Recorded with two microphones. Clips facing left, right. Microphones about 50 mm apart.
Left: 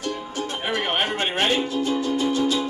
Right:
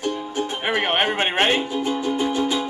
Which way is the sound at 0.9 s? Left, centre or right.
Right.